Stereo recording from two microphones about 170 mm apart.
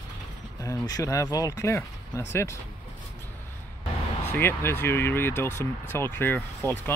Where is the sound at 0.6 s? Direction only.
20° left (ahead or behind).